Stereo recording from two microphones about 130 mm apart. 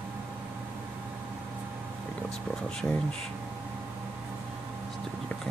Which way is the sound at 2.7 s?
5° left (ahead or behind).